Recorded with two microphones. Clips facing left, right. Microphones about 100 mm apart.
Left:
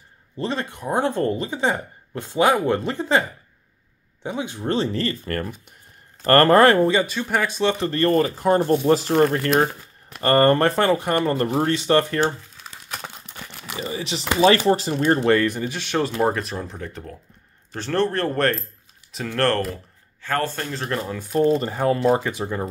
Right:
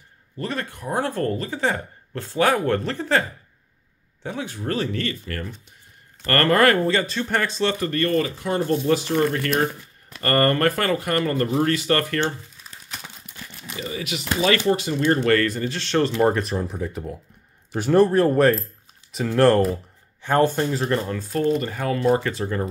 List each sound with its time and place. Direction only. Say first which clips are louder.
0.4 s speech: left 2 dB; 20° left (ahead or behind)
5.2 s speech: left 5 dB; 50° left (ahead or behind)
6.2 s speech: left 4 dB; 35° left (ahead or behind); by 7.7 s 15° left (ahead or behind)
7.8 s speech: left 4 dB; 30° left (ahead or behind)
13.4 s crumpling: left 3 dB; 65° left (ahead or behind)
13.7 s speech: left 1 dB; 30° left (ahead or behind)
15.2 s speech: left 1 dB; 20° left (ahead or behind)
16.2 s speech: right 2 dB; centre (ahead or behind); by 20.7 s 20° right (ahead or behind)
20.7 s speech: right 3 dB; centre (ahead or behind)
21.2 s speech: left 4 dB; 15° left (ahead or behind)
21.5 s speech: left 1 dB; 25° left (ahead or behind)
22.2 s speech: right 1 dB; 15° left (ahead or behind)